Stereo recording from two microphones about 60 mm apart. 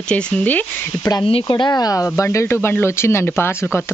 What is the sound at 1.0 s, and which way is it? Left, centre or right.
Speech, left.